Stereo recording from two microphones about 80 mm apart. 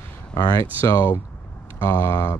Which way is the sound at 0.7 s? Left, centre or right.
Left.